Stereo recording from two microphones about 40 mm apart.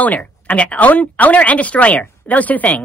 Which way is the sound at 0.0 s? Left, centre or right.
Left.